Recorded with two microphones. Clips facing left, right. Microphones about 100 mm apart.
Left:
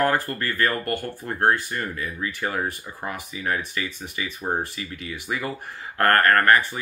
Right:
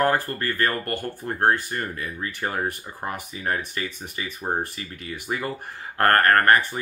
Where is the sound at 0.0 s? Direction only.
35° right (ahead or behind).